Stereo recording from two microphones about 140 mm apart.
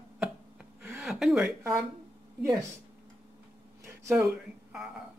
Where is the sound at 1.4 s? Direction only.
20° right (ahead or behind).